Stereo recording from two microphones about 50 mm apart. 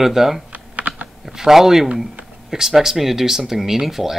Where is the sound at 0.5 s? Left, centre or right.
Right.